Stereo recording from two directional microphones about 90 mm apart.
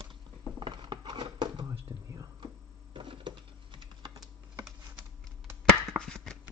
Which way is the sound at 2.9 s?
70° right (ahead or behind).